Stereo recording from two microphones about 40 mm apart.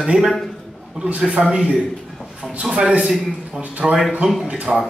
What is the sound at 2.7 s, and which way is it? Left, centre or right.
Speech, right.